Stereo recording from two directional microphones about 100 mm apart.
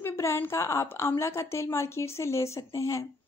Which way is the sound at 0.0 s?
25° left (ahead or behind).